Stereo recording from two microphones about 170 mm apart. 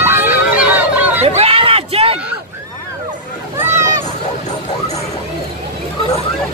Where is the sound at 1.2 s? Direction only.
40° right (ahead or behind).